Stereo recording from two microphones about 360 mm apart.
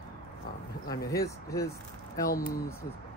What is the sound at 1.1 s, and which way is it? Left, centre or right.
Speech, centre.